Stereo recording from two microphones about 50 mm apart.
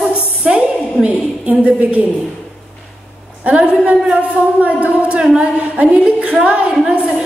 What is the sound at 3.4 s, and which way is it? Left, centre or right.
A woman's voice, right.